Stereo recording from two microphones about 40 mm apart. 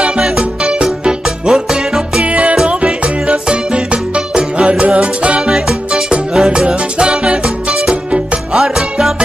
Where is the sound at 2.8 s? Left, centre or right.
Right.